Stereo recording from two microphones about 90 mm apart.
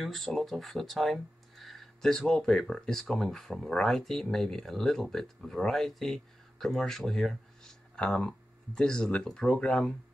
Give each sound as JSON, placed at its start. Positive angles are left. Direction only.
{"t": 0.0, "sound": "speech", "side_deg": 0}